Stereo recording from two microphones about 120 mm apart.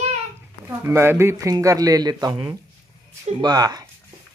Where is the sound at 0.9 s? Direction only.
20° right (ahead or behind).